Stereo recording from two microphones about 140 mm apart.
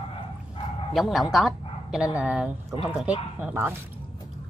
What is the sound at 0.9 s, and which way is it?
Speech, centre (ahead or behind).